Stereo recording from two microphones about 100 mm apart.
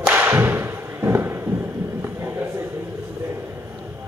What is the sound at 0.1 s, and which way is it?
Thump, 25° right (ahead or behind).